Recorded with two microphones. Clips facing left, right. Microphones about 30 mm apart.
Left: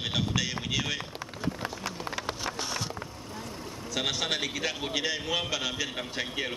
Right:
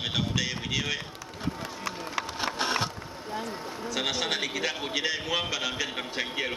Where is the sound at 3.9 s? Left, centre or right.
Centre.